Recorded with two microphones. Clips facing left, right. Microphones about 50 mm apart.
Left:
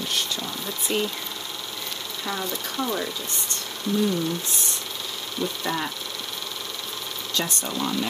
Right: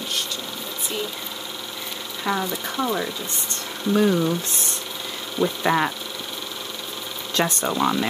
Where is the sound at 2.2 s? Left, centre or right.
Right.